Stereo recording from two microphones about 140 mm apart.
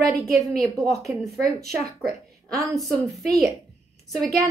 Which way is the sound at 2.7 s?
Centre (ahead or behind).